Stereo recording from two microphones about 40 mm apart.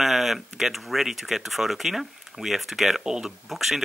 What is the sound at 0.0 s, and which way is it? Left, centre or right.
Speech, centre.